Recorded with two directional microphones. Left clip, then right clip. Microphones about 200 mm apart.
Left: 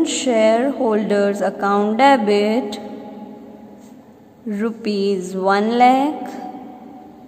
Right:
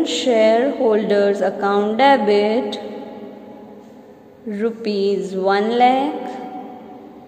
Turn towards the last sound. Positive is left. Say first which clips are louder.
# left 1 dB
turn(degrees=20)  # may be behind; listen again after turning